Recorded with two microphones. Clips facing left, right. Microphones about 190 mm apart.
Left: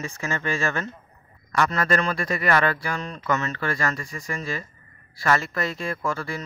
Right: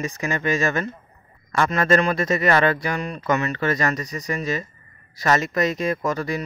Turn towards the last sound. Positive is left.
turn(degrees=-20)  # may be behind; listen again after turning